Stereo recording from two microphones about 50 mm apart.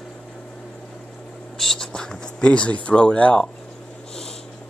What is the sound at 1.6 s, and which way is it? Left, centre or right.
Speech, centre.